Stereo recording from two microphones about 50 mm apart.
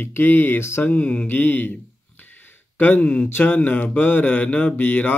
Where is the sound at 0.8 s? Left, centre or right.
Left.